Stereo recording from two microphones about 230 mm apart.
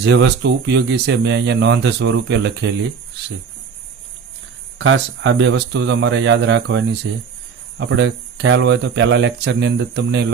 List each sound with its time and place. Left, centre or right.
0.0 s speech: right
4.7 s speech: right